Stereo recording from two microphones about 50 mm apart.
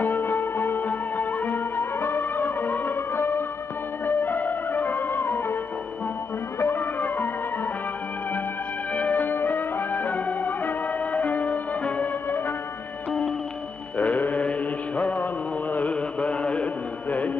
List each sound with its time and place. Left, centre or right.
0.0 s music: left
6.6 s music: left
8.9 s music: left
9.2 s music: left
13.9 s music: left
15.0 s mantra: left